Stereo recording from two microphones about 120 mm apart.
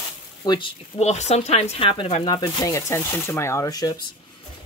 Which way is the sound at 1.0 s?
65° left (ahead or behind).